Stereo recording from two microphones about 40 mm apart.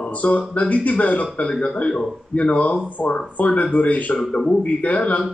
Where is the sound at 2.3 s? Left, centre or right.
Left.